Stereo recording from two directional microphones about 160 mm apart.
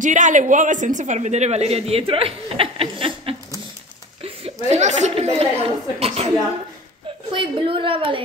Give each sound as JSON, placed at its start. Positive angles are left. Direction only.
{"t": 0.0, "sound": "a man's voice", "side_deg": -50}
{"t": 7.3, "sound": "a woman's voice", "side_deg": -35}